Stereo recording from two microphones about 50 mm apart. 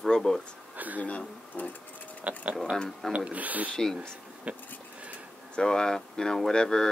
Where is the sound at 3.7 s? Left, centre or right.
Centre.